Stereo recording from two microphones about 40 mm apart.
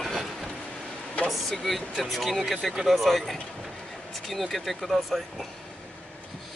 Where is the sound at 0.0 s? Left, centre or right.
Centre.